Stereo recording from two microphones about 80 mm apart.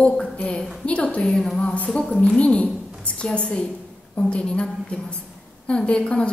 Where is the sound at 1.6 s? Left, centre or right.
Centre.